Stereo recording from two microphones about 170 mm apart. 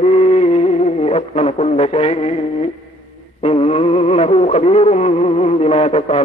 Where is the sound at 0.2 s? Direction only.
40° left (ahead or behind).